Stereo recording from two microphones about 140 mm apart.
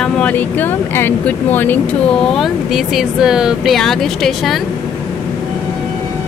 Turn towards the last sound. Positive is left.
turn(degrees=5)  # may be behind; listen again after turning